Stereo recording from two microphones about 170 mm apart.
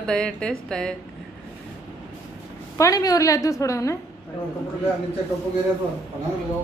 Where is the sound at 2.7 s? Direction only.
20° left (ahead or behind).